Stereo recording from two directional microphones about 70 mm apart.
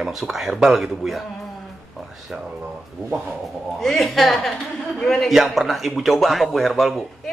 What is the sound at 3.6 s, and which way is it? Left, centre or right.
A man's voice, centre.